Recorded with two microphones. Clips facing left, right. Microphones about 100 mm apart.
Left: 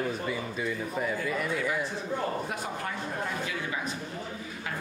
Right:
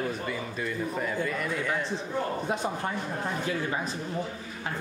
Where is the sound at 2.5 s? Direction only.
25° right (ahead or behind).